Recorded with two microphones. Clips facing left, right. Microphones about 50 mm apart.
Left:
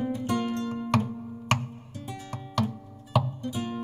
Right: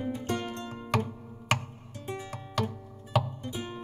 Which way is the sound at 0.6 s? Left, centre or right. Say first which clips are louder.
Left 4 dB; centre.